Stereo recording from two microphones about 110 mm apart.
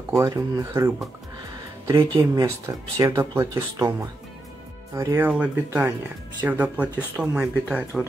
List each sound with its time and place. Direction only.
0.1 s speech: 30° right (ahead or behind)
2.1 s speech: 30° right (ahead or behind)
5.3 s speech: 15° right (ahead or behind)